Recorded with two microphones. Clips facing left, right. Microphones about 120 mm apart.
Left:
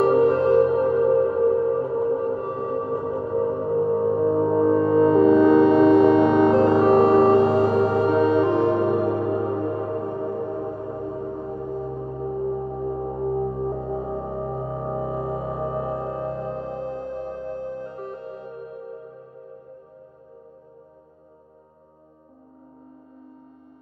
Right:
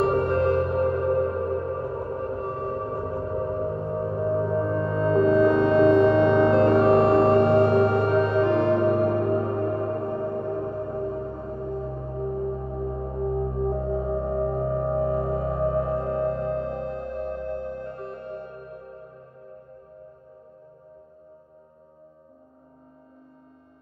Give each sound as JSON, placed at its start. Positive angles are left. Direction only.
{"t": 0.0, "sound": "music", "side_deg": 0}
{"t": 4.2, "sound": "music", "side_deg": 25}
{"t": 4.9, "sound": "music", "side_deg": 5}